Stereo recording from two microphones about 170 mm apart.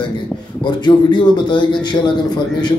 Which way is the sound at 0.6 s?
25° left (ahead or behind).